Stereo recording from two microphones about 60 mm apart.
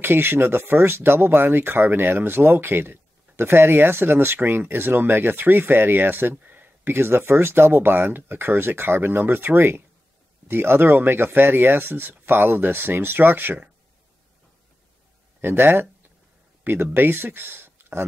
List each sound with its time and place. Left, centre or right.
0.0 s speech: right
15.4 s speech: right